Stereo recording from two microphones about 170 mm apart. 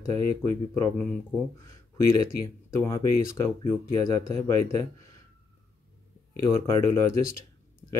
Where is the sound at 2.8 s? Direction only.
15° left (ahead or behind).